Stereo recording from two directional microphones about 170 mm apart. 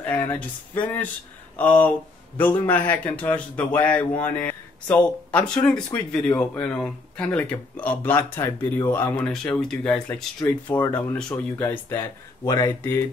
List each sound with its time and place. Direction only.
0.0 s speech: 10° left (ahead or behind)